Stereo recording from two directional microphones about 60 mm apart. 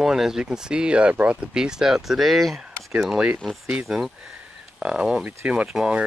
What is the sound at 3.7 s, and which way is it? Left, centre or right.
Speech, centre.